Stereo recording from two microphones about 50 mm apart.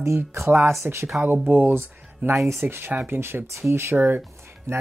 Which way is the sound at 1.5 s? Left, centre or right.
Right.